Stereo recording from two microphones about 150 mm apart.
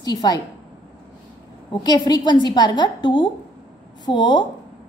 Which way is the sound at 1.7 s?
30° left (ahead or behind).